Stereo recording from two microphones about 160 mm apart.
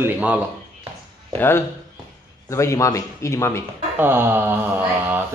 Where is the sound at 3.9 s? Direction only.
15° right (ahead or behind).